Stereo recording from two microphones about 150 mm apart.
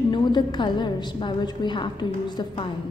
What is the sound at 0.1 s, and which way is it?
A woman's voice, 30° left (ahead or behind).